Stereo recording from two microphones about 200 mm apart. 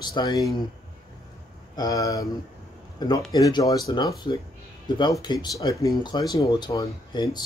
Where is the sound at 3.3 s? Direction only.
15° left (ahead or behind).